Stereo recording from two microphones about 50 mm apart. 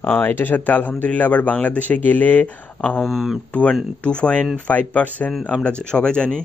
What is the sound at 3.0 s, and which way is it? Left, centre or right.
Speech, centre.